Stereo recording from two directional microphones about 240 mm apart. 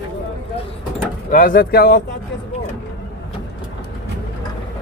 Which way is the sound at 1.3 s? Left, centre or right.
Left.